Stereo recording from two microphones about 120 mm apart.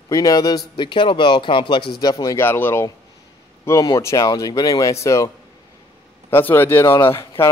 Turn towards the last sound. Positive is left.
turn(degrees=20)  # may be behind; listen again after turning